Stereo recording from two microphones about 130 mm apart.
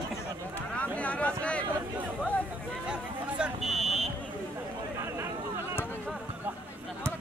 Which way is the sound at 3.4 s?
Centre (ahead or behind).